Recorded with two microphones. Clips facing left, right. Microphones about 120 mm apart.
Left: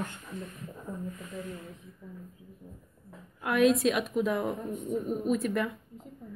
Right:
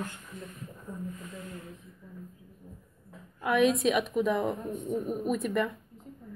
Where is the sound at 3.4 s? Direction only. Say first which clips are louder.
Left 1 dB; centre (ahead or behind).